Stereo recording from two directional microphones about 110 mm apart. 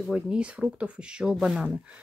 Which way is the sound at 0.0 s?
10° right (ahead or behind).